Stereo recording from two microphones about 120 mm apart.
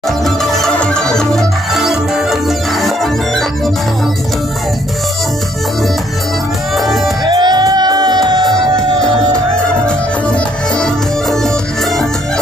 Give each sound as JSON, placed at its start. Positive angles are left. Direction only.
{"t": 0.2, "sound": "music", "side_deg": 0}
{"t": 6.8, "sound": "music", "side_deg": 0}
{"t": 7.2, "sound": "music", "side_deg": -35}
{"t": 8.5, "sound": "music", "side_deg": 5}